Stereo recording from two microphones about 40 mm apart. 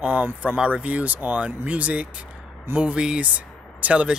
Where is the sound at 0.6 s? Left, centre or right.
Right.